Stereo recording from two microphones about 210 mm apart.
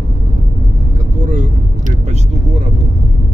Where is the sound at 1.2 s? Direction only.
35° right (ahead or behind).